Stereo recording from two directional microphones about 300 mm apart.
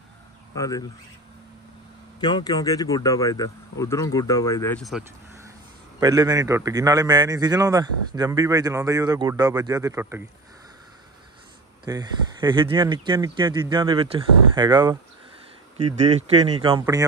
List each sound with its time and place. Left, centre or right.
0.6 s speech: centre
2.1 s speech: centre
5.9 s a man's voice: centre
11.8 s a man's voice: centre